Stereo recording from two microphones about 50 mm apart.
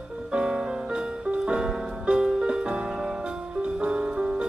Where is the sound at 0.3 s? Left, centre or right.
Centre.